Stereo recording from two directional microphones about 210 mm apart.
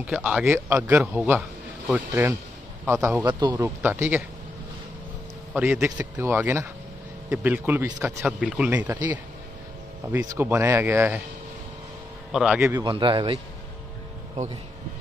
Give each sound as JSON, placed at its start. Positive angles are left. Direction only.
{"t": 0.0, "sound": "speech", "side_deg": -5}
{"t": 5.5, "sound": "speech", "side_deg": -10}
{"t": 10.3, "sound": "speech", "side_deg": -10}
{"t": 12.3, "sound": "speech", "side_deg": -5}
{"t": 12.9, "sound": "a man's voice", "side_deg": -25}